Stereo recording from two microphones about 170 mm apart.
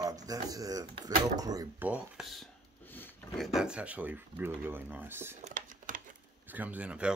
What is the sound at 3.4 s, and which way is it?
Speech, centre (ahead or behind).